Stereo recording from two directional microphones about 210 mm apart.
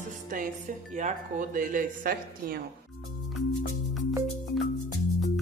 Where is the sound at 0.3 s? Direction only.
40° right (ahead or behind).